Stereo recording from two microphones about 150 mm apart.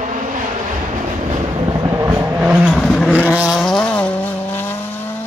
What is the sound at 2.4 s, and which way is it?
Vehicle, 5° right (ahead or behind).